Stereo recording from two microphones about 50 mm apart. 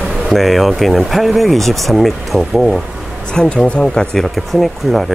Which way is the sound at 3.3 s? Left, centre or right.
Centre.